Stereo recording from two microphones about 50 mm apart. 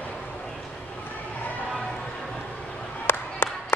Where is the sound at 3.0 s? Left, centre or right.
Left.